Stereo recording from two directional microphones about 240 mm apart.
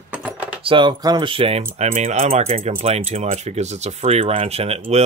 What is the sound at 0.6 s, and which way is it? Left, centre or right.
Speech, right.